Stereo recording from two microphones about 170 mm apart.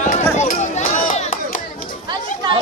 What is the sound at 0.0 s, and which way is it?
Run, 45° left (ahead or behind).